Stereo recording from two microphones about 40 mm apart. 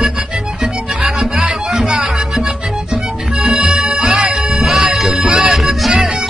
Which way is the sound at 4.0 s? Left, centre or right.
Right.